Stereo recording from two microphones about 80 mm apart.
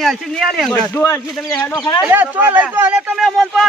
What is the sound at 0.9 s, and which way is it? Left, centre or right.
Speech, left.